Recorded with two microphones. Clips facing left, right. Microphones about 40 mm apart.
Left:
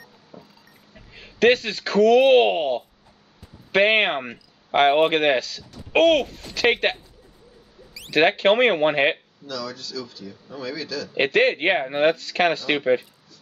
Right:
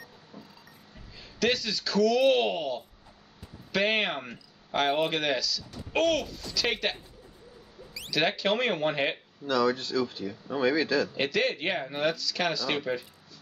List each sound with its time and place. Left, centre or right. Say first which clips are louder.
0.3 s music: left 4 dB; left
1.1 s speech: left 10 dB; left
8.1 s speech: left 9 dB; left
9.5 s speech: right 6 dB; right
11.1 s speech: left 8 dB; left